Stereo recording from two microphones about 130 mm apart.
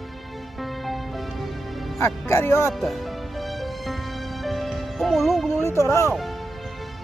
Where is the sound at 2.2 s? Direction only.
20° left (ahead or behind).